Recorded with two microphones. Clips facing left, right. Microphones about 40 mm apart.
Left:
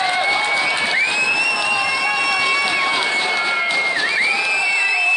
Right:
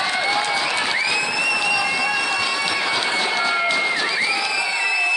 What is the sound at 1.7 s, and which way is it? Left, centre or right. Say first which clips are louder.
Run: left 2 dB; left.